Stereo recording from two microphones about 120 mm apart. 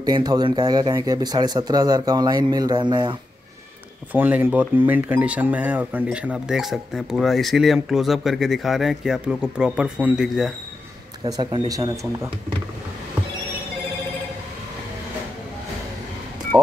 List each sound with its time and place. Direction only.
0.0 s speech: 35° right (ahead or behind)
4.1 s speech: 15° right (ahead or behind)
11.2 s speech: 35° right (ahead or behind)